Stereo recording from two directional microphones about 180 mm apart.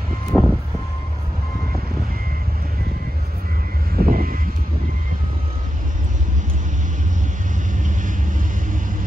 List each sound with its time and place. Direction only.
0.3 s vehicle: centre (ahead or behind)
4.0 s vehicle: 55° right (ahead or behind)